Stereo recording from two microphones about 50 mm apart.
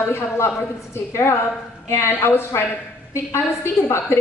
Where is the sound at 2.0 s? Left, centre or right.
Left.